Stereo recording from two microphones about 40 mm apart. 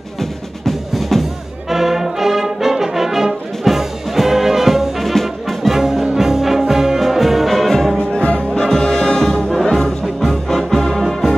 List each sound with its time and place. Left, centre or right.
0.2 s music: centre
1.7 s brass instrument: centre
5.8 s music: centre
8.5 s music: centre
9.8 s music: centre